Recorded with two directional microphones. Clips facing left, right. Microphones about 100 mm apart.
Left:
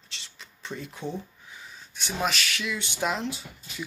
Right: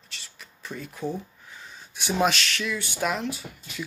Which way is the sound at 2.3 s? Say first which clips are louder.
Right 2 dB; 10° left (ahead or behind).